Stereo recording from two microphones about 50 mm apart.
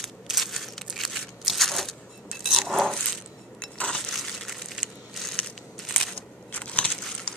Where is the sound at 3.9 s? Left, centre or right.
Centre.